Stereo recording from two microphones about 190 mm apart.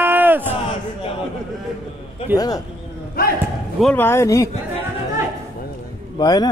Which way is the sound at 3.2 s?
50° left (ahead or behind).